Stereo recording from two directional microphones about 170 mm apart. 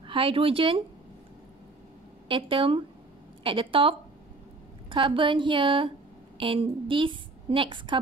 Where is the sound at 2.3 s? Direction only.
30° right (ahead or behind).